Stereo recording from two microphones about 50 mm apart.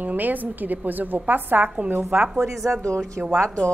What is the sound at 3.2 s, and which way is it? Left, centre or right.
Speech, centre.